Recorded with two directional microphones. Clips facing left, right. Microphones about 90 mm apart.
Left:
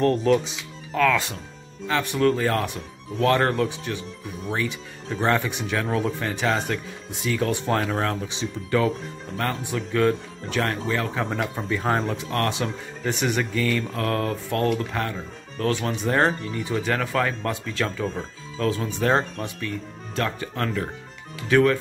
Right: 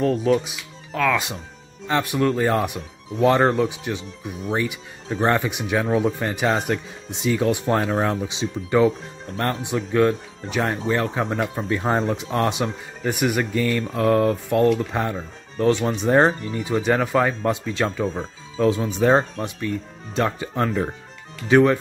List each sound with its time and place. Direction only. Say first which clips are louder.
0.0 s speech: even; 5° right (ahead or behind); by 21.7 s 20° right (ahead or behind)